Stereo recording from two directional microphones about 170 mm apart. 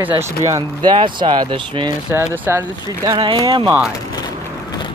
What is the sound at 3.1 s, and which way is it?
Speech, 30° right (ahead or behind).